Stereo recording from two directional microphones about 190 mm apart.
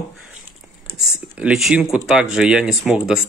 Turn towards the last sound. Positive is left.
turn(degrees=0)  # may be behind; listen again after turning